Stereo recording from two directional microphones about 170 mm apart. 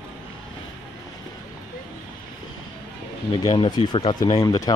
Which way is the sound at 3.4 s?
25° left (ahead or behind).